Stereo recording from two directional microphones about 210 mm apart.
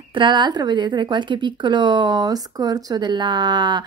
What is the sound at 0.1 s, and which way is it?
A woman's voice, 20° right (ahead or behind).